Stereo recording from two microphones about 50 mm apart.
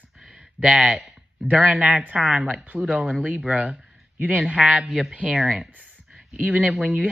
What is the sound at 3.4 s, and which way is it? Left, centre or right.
Speech, centre.